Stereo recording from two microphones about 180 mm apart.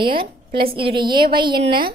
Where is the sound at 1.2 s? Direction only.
25° right (ahead or behind).